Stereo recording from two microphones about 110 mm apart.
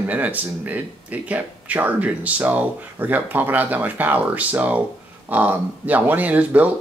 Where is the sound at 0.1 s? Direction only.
15° right (ahead or behind).